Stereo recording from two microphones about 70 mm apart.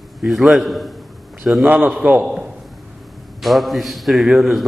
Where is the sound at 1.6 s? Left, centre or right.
Centre.